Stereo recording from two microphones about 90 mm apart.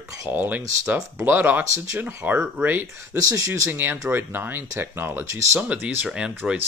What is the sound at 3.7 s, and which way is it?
Speech, 20° right (ahead or behind).